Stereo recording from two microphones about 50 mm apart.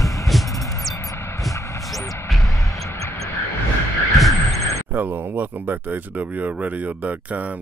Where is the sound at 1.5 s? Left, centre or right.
Left.